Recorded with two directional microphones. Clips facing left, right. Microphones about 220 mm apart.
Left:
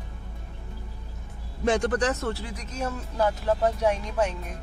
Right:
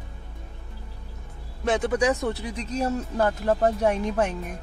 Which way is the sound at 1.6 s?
5° right (ahead or behind).